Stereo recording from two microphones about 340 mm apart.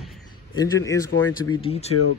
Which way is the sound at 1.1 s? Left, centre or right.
Left.